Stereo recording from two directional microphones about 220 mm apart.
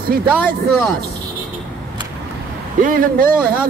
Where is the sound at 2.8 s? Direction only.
40° right (ahead or behind).